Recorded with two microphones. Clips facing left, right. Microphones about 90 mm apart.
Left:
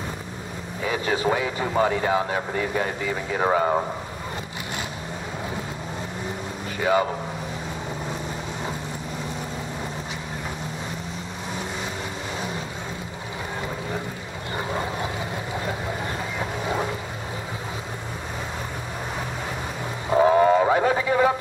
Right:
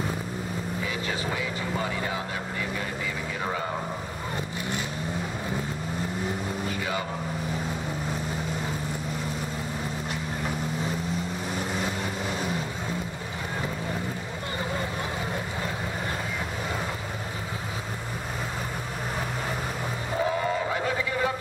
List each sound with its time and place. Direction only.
0.8 s speech: 50° left (ahead or behind)
6.8 s vehicle: 45° left (ahead or behind)
20.2 s a sound: 45° left (ahead or behind)